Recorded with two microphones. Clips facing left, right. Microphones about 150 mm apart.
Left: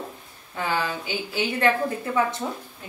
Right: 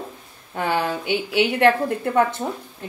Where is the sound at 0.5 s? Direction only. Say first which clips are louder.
Right 4 dB; 60° right (ahead or behind).